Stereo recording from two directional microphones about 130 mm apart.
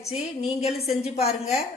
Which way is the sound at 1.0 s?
55° left (ahead or behind).